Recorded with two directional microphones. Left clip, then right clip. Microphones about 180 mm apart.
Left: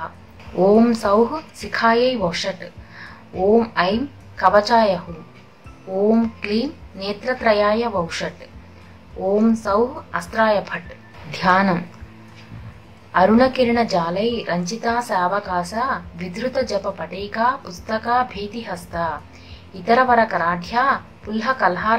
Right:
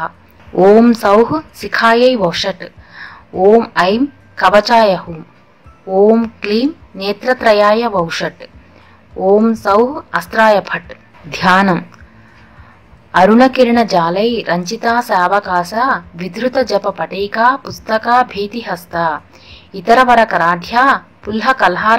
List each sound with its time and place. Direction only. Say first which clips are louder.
0.6 s a woman's voice: right 7 dB; 40° right (ahead or behind)
13.1 s a woman's voice: right 6 dB; 45° right (ahead or behind)